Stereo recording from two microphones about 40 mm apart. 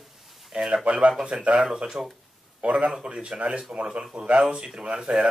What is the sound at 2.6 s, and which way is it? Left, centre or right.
Speech, right.